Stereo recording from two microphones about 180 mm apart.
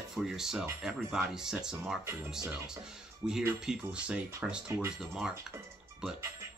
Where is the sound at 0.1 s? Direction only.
Centre (ahead or behind).